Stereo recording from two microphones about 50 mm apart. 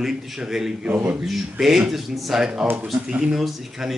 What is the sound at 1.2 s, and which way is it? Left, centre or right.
Speech, centre.